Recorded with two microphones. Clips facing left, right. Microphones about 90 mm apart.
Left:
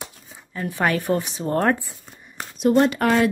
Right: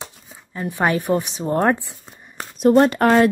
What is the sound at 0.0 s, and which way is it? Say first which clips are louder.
Speech: right 1 dB; 20° right (ahead or behind).